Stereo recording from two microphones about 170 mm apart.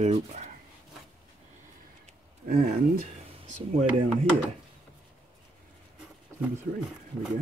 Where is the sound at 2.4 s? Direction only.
55° right (ahead or behind).